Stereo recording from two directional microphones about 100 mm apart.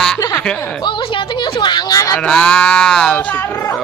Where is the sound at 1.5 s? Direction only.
50° left (ahead or behind).